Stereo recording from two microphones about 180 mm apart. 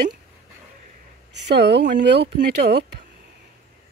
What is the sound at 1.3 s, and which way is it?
Speech, 70° right (ahead or behind).